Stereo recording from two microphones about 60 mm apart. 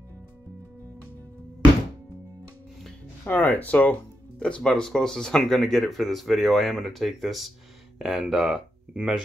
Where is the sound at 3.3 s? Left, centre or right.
Left.